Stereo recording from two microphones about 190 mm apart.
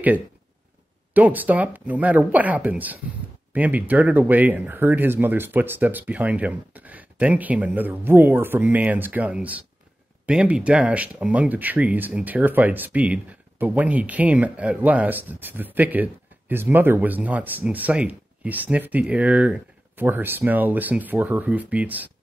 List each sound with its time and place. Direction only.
1.1 s speech: 10° right (ahead or behind)